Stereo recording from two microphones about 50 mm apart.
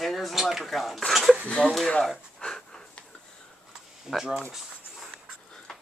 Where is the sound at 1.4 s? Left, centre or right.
Left.